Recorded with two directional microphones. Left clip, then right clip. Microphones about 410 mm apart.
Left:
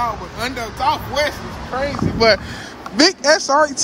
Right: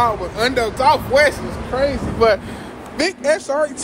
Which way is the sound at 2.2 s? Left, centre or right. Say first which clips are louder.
Even; left.